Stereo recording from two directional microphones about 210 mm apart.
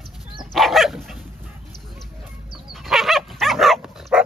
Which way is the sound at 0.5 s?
Centre (ahead or behind).